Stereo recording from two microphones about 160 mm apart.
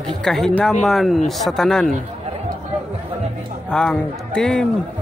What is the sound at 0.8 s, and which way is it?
Speech, centre (ahead or behind).